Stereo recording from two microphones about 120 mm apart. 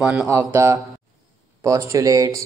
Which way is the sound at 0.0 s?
10° right (ahead or behind).